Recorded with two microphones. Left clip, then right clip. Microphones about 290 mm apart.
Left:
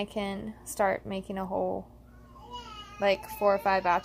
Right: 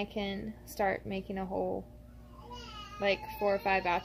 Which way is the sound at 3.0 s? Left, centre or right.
Centre.